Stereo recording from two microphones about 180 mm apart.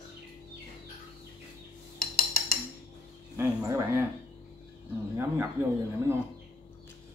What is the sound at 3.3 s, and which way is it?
Speech, 20° right (ahead or behind).